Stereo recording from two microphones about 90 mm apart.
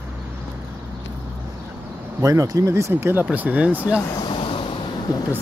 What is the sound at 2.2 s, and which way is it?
Speech, 40° right (ahead or behind).